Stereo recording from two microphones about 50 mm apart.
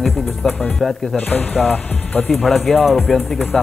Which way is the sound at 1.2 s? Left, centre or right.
Left.